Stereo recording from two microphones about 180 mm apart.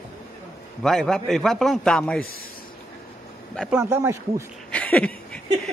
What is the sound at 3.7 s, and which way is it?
Speech, 10° right (ahead or behind).